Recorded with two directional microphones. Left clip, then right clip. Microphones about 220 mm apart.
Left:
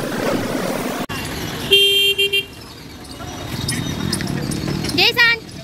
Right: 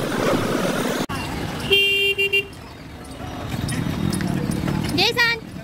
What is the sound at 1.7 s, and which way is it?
Vehicle, 45° right (ahead or behind).